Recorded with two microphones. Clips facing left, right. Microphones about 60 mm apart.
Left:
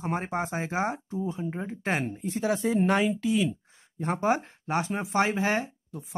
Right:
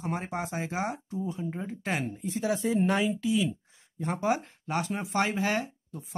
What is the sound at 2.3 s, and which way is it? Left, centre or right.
Speech, left.